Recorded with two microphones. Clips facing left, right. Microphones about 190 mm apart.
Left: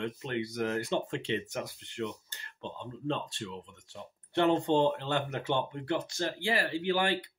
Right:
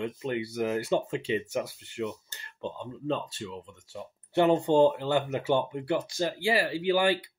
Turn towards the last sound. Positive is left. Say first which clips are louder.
# right 4 dB
turn(degrees=-10)  # may be behind; listen again after turning